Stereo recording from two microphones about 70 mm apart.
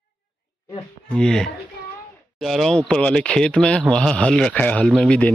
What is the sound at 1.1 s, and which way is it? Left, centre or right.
Speech, centre.